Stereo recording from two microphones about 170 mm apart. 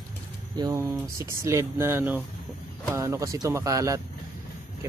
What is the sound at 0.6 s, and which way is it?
Speech, 15° right (ahead or behind).